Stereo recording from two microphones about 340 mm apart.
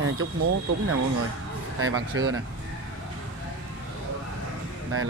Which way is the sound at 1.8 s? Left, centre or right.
Right.